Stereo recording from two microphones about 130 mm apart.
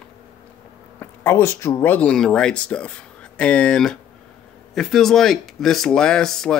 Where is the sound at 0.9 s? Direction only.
20° left (ahead or behind).